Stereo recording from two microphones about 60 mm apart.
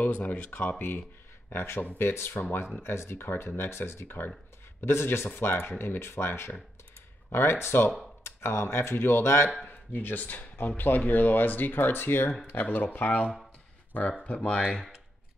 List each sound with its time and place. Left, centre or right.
0.0 s speech: left
14.6 s speech: centre